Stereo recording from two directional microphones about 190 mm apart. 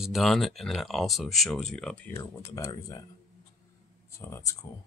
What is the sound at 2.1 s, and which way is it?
Speech, 15° left (ahead or behind).